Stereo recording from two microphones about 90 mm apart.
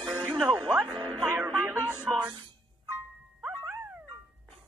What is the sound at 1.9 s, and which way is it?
Music, 10° right (ahead or behind).